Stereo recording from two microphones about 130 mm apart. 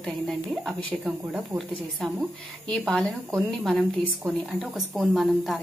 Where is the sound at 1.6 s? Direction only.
Centre (ahead or behind).